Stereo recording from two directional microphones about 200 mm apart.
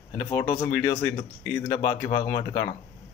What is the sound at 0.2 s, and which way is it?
Speech, 15° left (ahead or behind).